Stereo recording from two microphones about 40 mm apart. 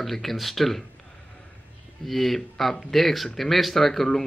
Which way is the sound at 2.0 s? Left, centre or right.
Centre.